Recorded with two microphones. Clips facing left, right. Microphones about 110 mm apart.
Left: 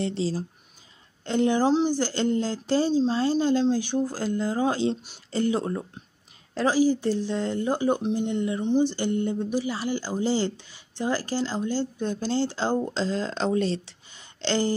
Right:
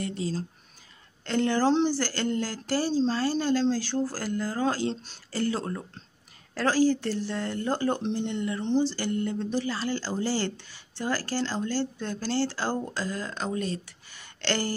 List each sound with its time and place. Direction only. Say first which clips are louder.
0.0 s speech: left 5 dB; 30° left (ahead or behind)
1.2 s speech: left 2 dB; 20° left (ahead or behind)